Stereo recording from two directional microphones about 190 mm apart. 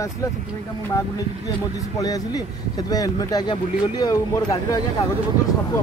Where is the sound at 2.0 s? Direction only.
20° left (ahead or behind).